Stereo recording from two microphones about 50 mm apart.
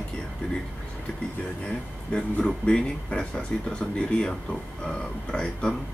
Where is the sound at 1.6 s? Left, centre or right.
Left.